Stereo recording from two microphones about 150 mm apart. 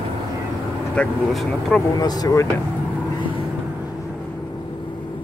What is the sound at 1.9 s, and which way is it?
Speech, 25° left (ahead or behind).